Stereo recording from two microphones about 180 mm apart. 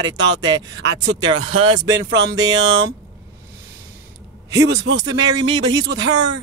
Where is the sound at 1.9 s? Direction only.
75° right (ahead or behind).